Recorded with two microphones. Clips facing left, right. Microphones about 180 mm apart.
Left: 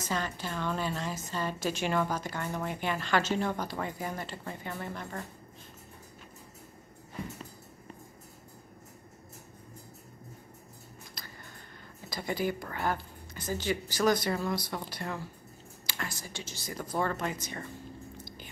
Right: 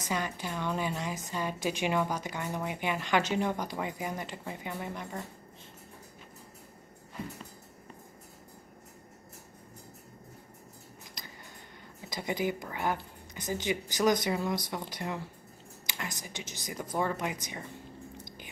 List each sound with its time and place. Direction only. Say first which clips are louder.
0.0 s a woman's voice: even; 15° right (ahead or behind)
11.2 s a sound: right 1 dB; 15° right (ahead or behind)
12.1 s a woman's voice: even; 15° right (ahead or behind)